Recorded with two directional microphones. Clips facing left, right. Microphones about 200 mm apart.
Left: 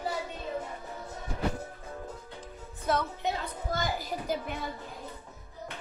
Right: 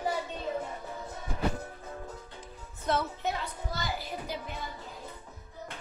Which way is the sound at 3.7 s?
50° left (ahead or behind).